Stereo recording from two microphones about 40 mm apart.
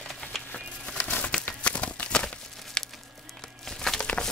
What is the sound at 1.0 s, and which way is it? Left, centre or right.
Crumpling, left.